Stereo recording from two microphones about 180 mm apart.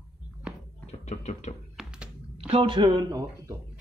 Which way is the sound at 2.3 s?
35° right (ahead or behind).